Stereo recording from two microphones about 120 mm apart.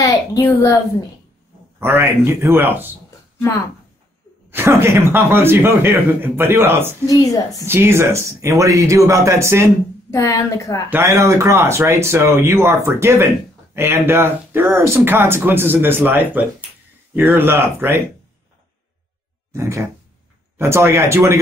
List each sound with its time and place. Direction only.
0.4 s a woman's voice: 15° left (ahead or behind)
2.0 s speech: 20° right (ahead or behind)
4.5 s speech: 20° right (ahead or behind)
7.1 s a woman's voice: 30° left (ahead or behind)
7.6 s speech: 20° right (ahead or behind)
10.1 s a woman's voice: 25° left (ahead or behind)
10.9 s speech: 20° right (ahead or behind)
19.5 s speech: 25° right (ahead or behind)